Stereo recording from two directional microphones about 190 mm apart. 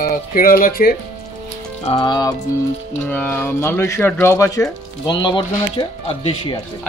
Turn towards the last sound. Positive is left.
turn(degrees=25)  # may be behind; listen again after turning